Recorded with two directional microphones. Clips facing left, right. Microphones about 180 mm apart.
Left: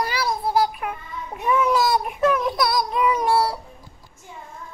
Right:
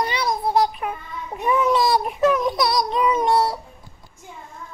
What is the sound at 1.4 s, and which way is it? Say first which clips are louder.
Speech: right 1 dB; centre (ahead or behind).